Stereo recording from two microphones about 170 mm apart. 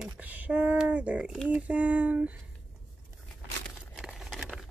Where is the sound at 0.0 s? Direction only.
10° right (ahead or behind).